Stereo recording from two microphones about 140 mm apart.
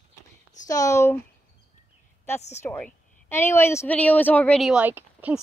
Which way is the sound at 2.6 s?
15° left (ahead or behind).